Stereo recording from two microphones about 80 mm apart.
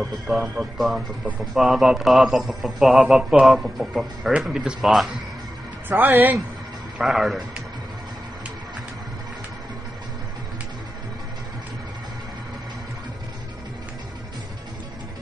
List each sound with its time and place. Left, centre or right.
0.3 s a man's voice: centre
5.9 s speech: right
7.0 s a man's voice: centre